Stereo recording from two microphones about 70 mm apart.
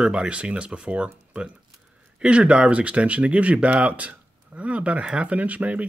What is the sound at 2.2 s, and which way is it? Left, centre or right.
Speech, centre.